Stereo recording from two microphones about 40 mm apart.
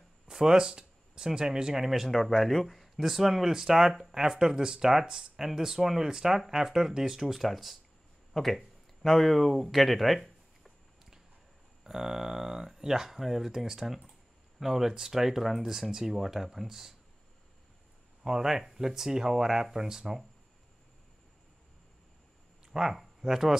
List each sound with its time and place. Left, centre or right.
0.3 s speech: centre
2.0 s speech: centre
11.8 s speech: centre
18.2 s speech: centre
22.7 s speech: centre